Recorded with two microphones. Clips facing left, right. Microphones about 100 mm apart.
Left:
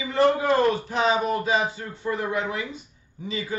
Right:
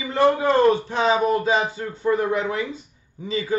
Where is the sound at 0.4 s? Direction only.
25° right (ahead or behind).